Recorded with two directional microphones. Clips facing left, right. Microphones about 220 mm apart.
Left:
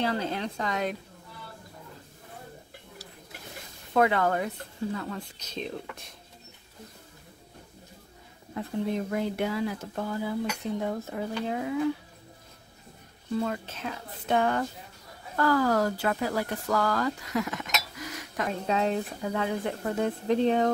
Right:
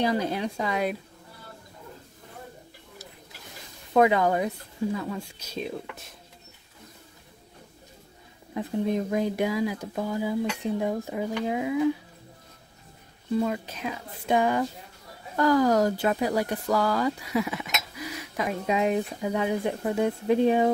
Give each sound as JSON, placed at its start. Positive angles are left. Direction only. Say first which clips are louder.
{"t": 0.0, "sound": "speech", "louder": "right 3 dB", "side_deg": -15}
{"t": 3.9, "sound": "speech", "louder": "right 3 dB", "side_deg": -15}
{"t": 8.5, "sound": "speech", "louder": "right 3 dB", "side_deg": -15}
{"t": 13.4, "sound": "speech", "louder": "right 3 dB", "side_deg": -15}